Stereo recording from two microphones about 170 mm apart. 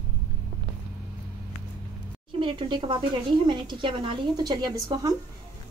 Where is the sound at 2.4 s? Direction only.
30° right (ahead or behind).